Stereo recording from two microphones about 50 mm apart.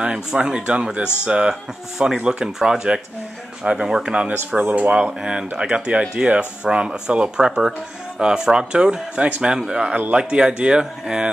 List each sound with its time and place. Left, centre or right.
0.0 s speech: centre
4.1 s speech: right